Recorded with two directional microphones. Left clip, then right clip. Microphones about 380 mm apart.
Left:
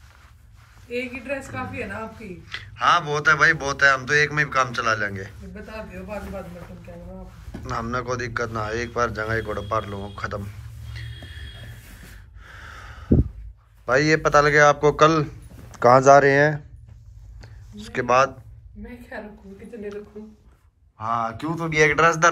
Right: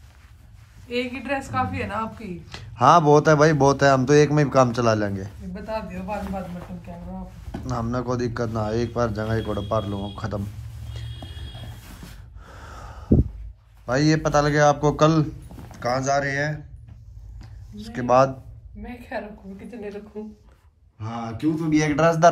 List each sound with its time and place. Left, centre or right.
1.4 s a man's voice: centre
7.7 s a man's voice: centre
13.8 s a man's voice: centre
17.4 s a sound: centre
21.0 s speech: centre
21.4 s a man's voice: centre